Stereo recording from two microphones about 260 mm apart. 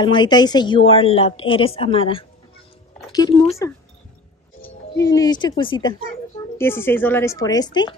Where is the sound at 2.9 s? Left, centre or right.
Centre.